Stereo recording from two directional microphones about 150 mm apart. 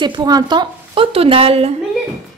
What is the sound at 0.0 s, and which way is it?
A woman's voice, 30° right (ahead or behind).